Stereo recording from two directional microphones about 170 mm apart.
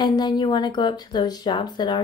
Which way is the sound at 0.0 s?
25° left (ahead or behind).